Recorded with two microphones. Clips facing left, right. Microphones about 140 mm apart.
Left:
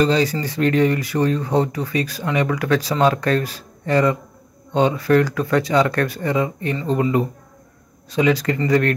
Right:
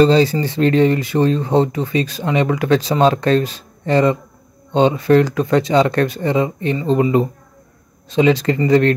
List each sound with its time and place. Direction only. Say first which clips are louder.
0.0 s speech: right 5 dB; 30° right (ahead or behind)